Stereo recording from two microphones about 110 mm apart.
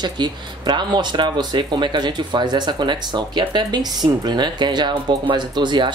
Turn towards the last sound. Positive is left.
turn(degrees=-45)  # may be behind; listen again after turning